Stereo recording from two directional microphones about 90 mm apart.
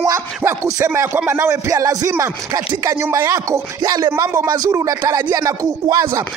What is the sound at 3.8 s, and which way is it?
Speech, 50° right (ahead or behind).